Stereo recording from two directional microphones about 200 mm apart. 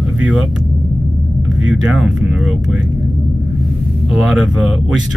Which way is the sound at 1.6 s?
Centre (ahead or behind).